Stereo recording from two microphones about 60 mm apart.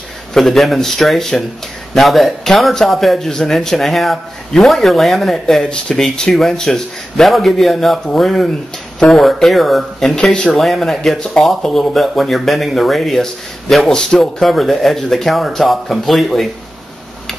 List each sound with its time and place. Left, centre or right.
0.3 s speech: centre
5.6 s speech: centre